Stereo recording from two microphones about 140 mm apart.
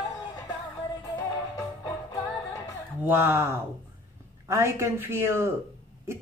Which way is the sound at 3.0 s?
15° right (ahead or behind).